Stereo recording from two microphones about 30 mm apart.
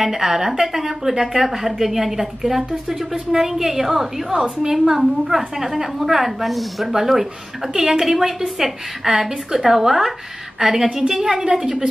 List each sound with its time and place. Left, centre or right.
0.0 s a woman's voice: centre
4.3 s a woman's voice: right
4.8 s a woman's voice: centre
5.2 s a woman's voice: right
5.6 s a woman's voice: centre
6.4 s a woman's voice: centre
11.5 s a woman's voice: right